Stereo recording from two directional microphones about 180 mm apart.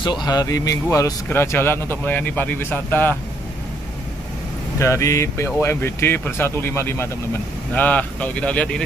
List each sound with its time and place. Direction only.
0.0 s speech: 25° left (ahead or behind)
4.7 s speech: 15° left (ahead or behind)